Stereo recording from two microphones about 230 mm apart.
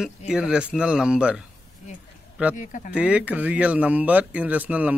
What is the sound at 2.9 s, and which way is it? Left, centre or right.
Speech, centre.